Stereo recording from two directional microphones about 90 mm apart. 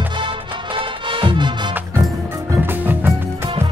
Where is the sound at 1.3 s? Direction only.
60° right (ahead or behind).